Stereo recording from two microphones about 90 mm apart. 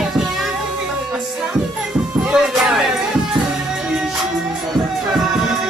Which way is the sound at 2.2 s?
5° right (ahead or behind).